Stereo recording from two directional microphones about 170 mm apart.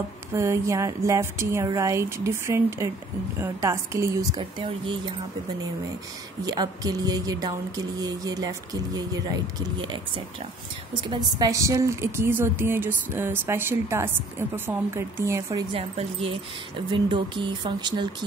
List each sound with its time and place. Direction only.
0.3 s a woman's voice: 15° right (ahead or behind)
4.4 s speech: 30° right (ahead or behind)
6.4 s a woman's voice: 25° right (ahead or behind)
15.7 s speech: 35° right (ahead or behind)